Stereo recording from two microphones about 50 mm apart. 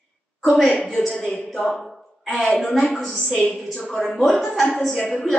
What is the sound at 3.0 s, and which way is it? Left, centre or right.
A woman's voice, centre.